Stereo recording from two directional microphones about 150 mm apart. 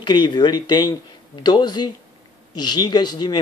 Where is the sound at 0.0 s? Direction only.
30° left (ahead or behind).